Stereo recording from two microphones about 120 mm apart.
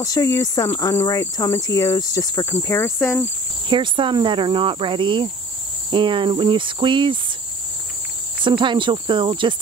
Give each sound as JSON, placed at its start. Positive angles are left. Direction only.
{"t": 0.0, "sound": "cricket", "side_deg": 30}
{"t": 3.6, "sound": "speech", "side_deg": -45}
{"t": 8.5, "sound": "speech", "side_deg": -40}